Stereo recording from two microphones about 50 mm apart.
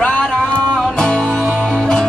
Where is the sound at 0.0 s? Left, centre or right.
Left.